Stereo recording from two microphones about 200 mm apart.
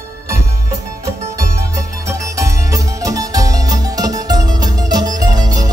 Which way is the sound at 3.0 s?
15° right (ahead or behind).